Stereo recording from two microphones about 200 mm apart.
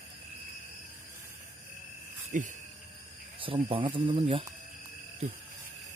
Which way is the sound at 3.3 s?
25° right (ahead or behind).